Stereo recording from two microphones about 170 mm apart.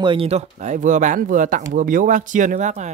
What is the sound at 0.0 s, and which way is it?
Speech, 30° right (ahead or behind).